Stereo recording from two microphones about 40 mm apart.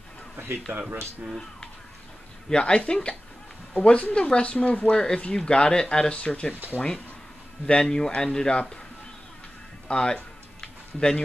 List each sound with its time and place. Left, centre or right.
0.7 s speech: right
2.5 s speech: left
4.9 s speech: left
6.1 s speech: left
7.6 s speech: centre
9.8 s a sound: left